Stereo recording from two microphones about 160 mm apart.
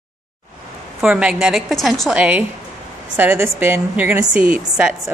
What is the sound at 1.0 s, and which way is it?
A woman's voice, 5° right (ahead or behind).